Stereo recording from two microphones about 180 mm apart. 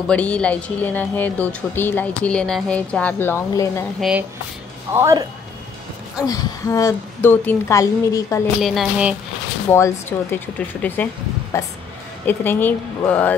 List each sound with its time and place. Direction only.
0.1 s speech: 5° left (ahead or behind)
4.9 s speech: 15° right (ahead or behind)
6.2 s speech: 20° left (ahead or behind)
8.5 s a woman's voice: centre (ahead or behind)
9.7 s speech: 15° left (ahead or behind)